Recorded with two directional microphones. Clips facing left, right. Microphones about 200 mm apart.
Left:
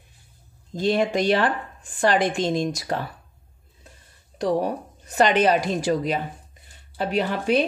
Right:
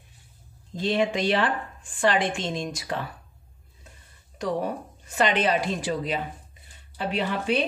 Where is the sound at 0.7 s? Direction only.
40° left (ahead or behind).